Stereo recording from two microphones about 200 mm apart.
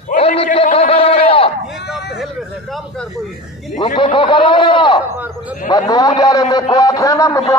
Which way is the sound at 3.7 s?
25° left (ahead or behind).